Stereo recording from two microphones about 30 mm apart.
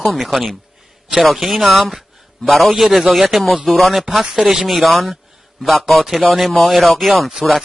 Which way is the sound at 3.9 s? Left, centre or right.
Centre.